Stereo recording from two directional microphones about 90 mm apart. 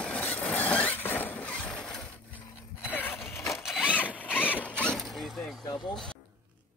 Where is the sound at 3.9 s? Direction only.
15° left (ahead or behind).